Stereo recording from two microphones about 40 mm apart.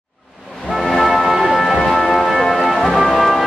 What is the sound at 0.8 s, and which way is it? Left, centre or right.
Music, centre.